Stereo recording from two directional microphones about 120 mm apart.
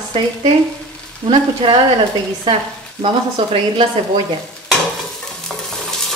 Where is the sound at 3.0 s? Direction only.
45° right (ahead or behind).